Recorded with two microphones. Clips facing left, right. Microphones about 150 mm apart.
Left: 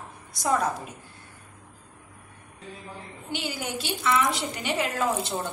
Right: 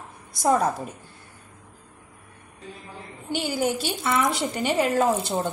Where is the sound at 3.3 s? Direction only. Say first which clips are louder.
Right 7 dB; 45° right (ahead or behind).